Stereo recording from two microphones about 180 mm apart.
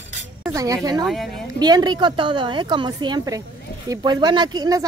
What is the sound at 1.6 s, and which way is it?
A woman's voice, 25° right (ahead or behind).